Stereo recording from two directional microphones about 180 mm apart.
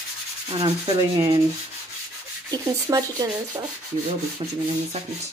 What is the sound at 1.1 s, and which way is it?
Rub, 25° right (ahead or behind).